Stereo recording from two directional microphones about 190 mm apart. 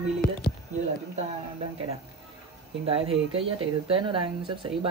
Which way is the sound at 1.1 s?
30° right (ahead or behind).